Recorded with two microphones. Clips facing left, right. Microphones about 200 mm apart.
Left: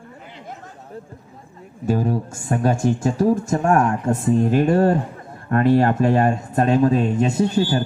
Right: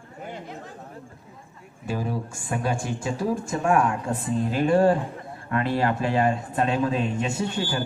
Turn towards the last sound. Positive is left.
turn(degrees=35)  # may be behind; listen again after turning